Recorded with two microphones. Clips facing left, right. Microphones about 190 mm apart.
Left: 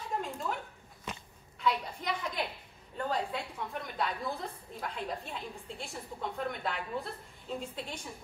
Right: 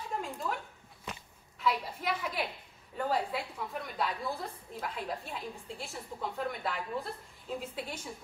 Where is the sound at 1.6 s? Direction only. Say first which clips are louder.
Even; 5° right (ahead or behind).